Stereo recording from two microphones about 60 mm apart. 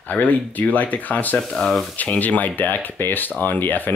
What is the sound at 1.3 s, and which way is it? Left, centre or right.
Speech, centre.